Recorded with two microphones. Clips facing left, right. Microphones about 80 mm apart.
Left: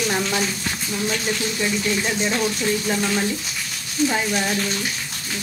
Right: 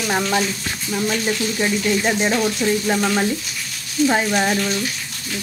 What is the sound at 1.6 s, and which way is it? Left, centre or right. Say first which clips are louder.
Speech: right 4 dB; right.